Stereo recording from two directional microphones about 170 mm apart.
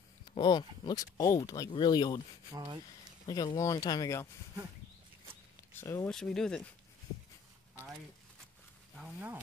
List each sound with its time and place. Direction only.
0.3 s speech: 25° left (ahead or behind)
2.5 s speech: 25° right (ahead or behind)
3.3 s speech: 20° left (ahead or behind)
5.8 s speech: 20° left (ahead or behind)
6.0 s speech: 5° left (ahead or behind)